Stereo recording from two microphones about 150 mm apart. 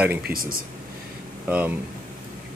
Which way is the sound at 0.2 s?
75° right (ahead or behind).